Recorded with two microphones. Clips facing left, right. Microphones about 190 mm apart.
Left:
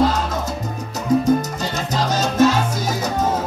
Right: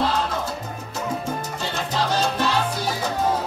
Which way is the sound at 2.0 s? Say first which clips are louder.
Left 6 dB; 45° left (ahead or behind).